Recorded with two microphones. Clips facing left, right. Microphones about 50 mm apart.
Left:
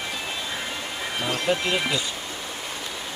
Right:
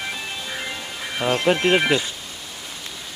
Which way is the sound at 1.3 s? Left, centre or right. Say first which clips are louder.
Right 7 dB; right.